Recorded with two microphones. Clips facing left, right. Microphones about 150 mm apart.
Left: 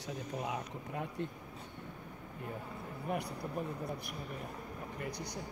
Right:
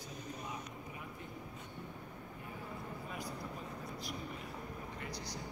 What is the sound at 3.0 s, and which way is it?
Speech, 65° left (ahead or behind).